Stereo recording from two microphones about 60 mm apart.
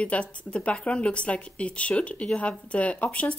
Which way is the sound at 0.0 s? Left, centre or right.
Centre.